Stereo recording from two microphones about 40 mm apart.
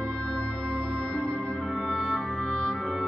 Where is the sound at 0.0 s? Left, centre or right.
Left.